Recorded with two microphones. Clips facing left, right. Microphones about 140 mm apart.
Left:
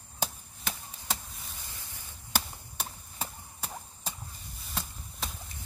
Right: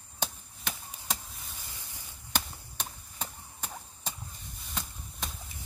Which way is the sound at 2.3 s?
5° left (ahead or behind).